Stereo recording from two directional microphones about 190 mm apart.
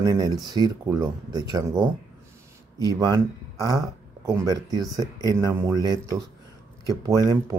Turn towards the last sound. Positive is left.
turn(degrees=-20)  # may be behind; listen again after turning